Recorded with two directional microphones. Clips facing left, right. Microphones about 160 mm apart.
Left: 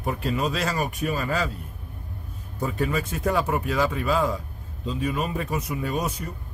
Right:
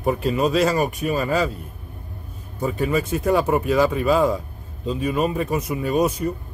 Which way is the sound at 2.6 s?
15° right (ahead or behind).